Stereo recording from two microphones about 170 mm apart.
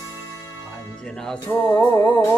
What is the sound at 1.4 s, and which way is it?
Music, 15° left (ahead or behind).